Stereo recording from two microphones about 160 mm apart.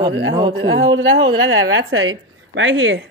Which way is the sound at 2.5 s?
90° right.